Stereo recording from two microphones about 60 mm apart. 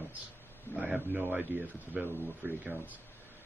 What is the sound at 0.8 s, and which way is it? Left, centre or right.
A man's voice, right.